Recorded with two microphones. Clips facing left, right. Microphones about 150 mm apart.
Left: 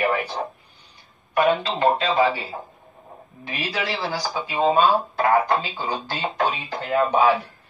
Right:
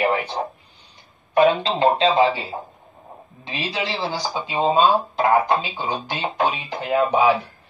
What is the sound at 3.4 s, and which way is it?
Speech, 25° right (ahead or behind).